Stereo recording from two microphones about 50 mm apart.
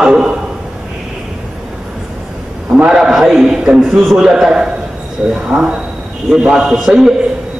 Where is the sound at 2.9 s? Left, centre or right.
Centre.